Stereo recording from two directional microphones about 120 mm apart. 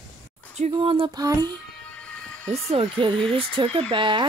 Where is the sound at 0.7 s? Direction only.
45° right (ahead or behind).